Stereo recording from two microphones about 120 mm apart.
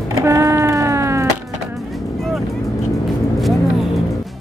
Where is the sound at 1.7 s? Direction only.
Centre (ahead or behind).